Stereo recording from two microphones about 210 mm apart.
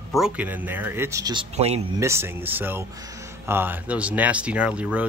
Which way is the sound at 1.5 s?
30° right (ahead or behind).